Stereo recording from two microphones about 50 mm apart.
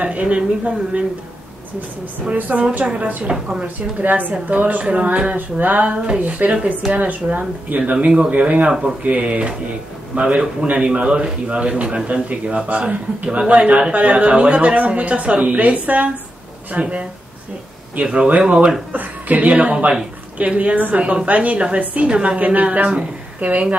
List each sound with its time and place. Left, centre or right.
0.0 s a man's voice: right
2.2 s a woman's voice: right
5.9 s a man's voice: centre
6.1 s a man's voice: right